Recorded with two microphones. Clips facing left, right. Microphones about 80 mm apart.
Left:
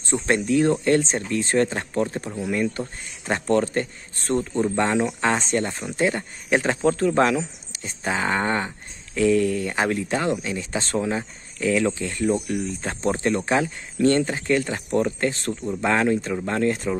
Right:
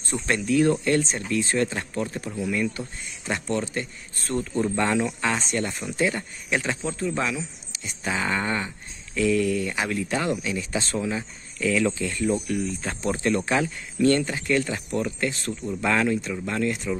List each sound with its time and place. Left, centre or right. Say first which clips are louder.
0.1 s speech: left 3 dB; left
4.3 s speech: left 3 dB; left
15.6 s speech: left 2 dB; left